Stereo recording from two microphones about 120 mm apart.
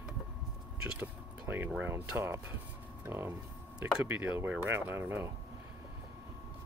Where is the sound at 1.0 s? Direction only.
15° right (ahead or behind).